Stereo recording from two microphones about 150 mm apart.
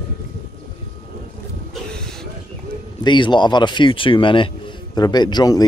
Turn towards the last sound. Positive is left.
turn(degrees=25)  # may be behind; listen again after turning